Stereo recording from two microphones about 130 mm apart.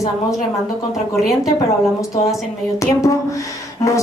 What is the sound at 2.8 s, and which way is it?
A woman's voice, 25° left (ahead or behind).